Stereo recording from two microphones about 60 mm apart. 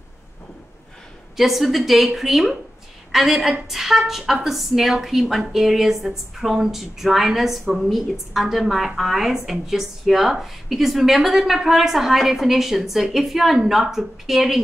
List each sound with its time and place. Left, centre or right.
1.3 s a woman's voice: centre